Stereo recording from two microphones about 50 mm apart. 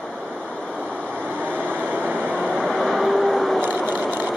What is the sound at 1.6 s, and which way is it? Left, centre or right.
Vehicle, right.